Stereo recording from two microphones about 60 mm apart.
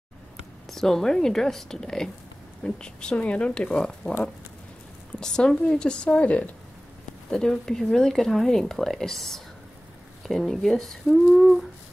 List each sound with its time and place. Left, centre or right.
0.7 s speech: centre
5.2 s speech: centre
7.2 s speech: centre